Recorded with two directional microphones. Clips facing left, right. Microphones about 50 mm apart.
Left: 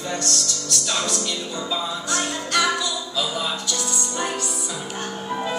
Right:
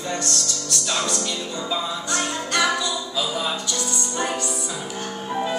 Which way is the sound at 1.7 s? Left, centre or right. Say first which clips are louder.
Even; centre.